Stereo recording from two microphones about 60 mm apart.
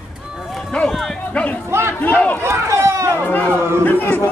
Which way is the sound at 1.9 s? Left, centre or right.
Left.